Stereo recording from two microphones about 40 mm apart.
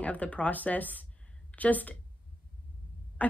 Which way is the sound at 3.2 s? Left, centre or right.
Left.